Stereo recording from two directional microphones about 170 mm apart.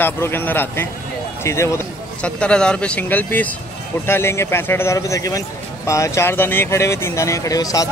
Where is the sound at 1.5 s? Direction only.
15° left (ahead or behind).